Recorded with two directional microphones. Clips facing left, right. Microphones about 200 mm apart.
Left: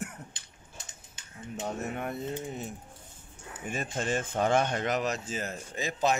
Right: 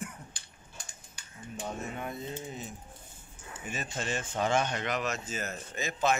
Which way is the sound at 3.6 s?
50° left (ahead or behind).